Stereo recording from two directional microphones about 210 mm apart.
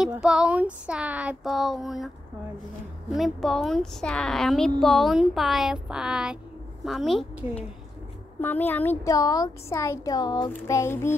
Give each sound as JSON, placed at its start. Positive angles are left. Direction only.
{"t": 0.0, "sound": "a woman's voice", "side_deg": -5}
{"t": 3.1, "sound": "a woman's voice", "side_deg": 0}